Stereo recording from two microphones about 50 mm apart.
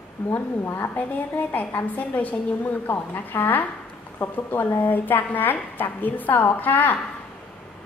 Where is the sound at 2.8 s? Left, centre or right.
Left.